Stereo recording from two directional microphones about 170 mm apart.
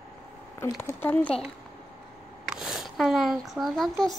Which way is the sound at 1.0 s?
10° left (ahead or behind).